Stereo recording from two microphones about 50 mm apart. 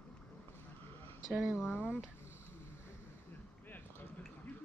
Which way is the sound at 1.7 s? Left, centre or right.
Right.